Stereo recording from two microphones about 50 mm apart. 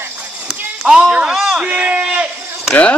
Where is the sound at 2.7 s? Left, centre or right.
Left.